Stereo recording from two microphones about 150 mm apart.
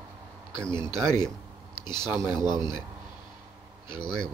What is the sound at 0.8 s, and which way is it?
Speech, 30° left (ahead or behind).